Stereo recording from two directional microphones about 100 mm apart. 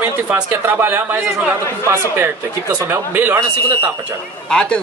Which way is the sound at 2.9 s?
20° right (ahead or behind).